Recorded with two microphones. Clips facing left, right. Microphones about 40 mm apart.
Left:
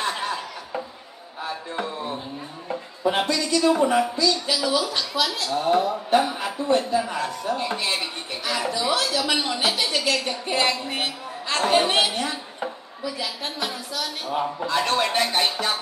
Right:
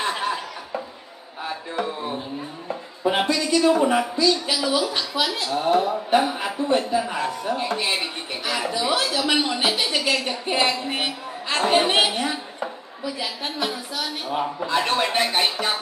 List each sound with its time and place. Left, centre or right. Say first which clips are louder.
0.0 s chuckle: right 2 dB; centre
3.1 s a woman's voice: right 1 dB; right